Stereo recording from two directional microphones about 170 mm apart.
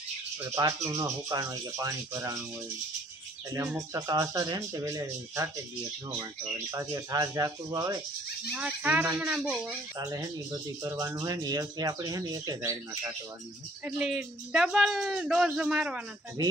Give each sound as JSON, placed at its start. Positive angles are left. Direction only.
{"t": 0.8, "sound": "speech", "side_deg": -20}
{"t": 3.5, "sound": "speech", "side_deg": -20}
{"t": 6.7, "sound": "speech", "side_deg": -20}
{"t": 8.5, "sound": "speech", "side_deg": -10}
{"t": 9.9, "sound": "speech", "side_deg": -20}
{"t": 13.8, "sound": "speech", "side_deg": -5}
{"t": 16.4, "sound": "speech", "side_deg": -20}